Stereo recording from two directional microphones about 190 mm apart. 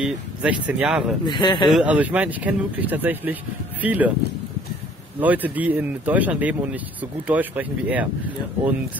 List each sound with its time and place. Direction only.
0.0 s speech: 5° right (ahead or behind)
1.2 s speech: 20° left (ahead or behind)
1.7 s speech: 5° right (ahead or behind)
5.2 s speech: 10° right (ahead or behind)